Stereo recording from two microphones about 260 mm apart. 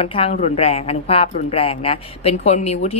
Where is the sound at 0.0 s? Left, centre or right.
Left.